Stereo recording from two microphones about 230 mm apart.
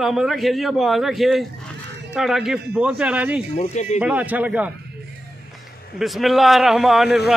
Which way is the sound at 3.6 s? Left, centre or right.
Left.